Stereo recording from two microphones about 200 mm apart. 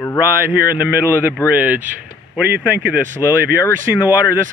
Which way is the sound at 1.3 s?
10° right (ahead or behind).